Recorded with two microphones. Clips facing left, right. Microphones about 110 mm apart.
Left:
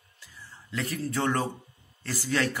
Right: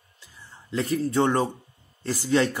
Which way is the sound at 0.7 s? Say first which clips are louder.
Right 7 dB; 25° right (ahead or behind).